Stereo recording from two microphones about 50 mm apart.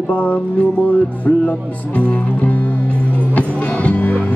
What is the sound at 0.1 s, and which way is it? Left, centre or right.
Music, left.